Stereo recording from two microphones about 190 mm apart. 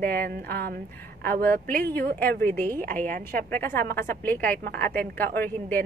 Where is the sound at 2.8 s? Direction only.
45° right (ahead or behind).